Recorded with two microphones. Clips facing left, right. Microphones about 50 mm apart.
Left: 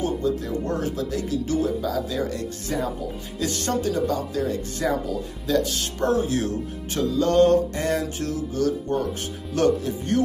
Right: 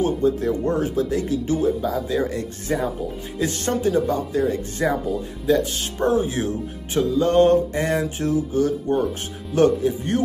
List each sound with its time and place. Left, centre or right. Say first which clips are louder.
0.0 s speech: right 5 dB; right